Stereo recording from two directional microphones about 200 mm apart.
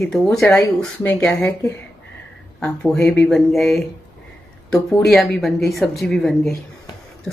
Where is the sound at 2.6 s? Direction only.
5° left (ahead or behind).